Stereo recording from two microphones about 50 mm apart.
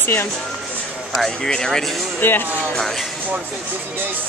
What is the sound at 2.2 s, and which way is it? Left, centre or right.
Speech, left.